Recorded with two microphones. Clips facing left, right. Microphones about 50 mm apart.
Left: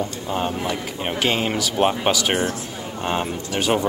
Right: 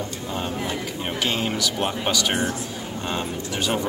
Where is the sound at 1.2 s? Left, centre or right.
Left.